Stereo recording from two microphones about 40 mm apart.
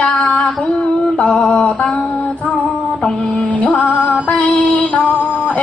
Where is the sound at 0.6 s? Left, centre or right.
Left.